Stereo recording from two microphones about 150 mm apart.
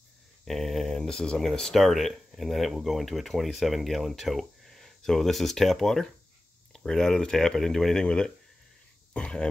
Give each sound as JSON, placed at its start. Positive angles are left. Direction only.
{"t": 0.5, "sound": "speech", "side_deg": 0}